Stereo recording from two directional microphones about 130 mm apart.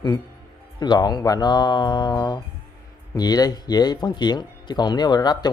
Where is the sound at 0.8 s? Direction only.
30° left (ahead or behind).